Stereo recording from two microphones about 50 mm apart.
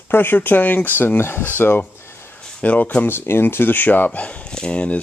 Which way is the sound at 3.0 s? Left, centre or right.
Left.